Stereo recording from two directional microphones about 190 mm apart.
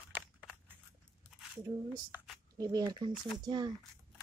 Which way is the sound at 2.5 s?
20° right (ahead or behind).